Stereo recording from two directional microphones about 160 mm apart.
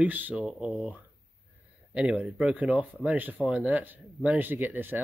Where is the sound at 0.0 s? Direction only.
10° right (ahead or behind).